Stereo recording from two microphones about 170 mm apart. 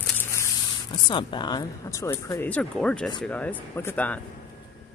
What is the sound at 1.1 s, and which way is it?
Speech, 30° left (ahead or behind).